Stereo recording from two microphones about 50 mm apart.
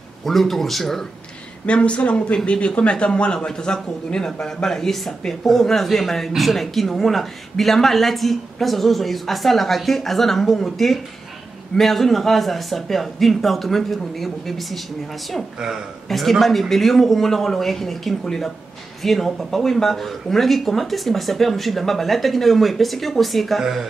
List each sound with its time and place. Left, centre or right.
0.2 s a man's voice: centre
1.7 s a man's voice: left; by 14.8 s centre
16.1 s a man's voice: centre